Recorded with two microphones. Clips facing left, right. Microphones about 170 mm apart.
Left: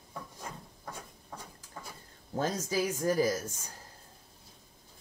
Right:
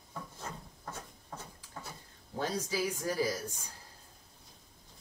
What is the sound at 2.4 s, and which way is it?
Speech, 45° left (ahead or behind).